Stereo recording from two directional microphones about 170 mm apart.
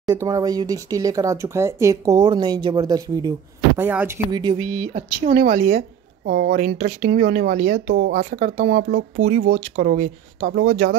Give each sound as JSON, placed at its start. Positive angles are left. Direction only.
{"t": 0.0, "sound": "speech", "side_deg": -25}
{"t": 3.8, "sound": "speech", "side_deg": -10}
{"t": 4.3, "sound": "speech", "side_deg": -25}
{"t": 4.9, "sound": "a woman's voice", "side_deg": -45}
{"t": 8.2, "sound": "speech", "side_deg": -50}
{"t": 9.8, "sound": "speech", "side_deg": -50}